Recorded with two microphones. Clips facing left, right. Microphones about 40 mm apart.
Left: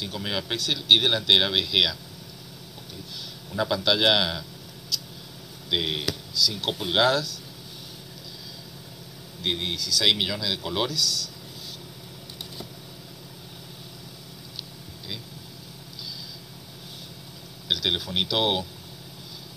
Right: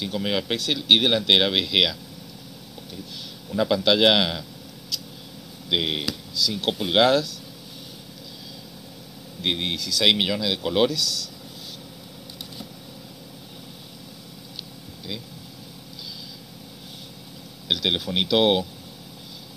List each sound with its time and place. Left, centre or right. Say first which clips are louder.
0.0 s speech: right 5 dB; right
3.5 s speech: right 4 dB; right
5.7 s speech: right 2 dB; right
9.4 s speech: right 2 dB; right
17.6 s speech: right 2 dB; right